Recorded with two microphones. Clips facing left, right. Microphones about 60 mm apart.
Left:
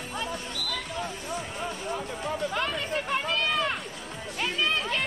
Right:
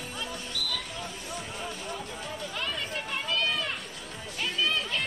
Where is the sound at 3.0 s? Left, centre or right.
Left.